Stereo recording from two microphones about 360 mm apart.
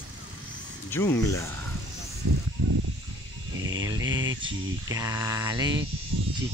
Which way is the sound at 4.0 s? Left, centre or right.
Right.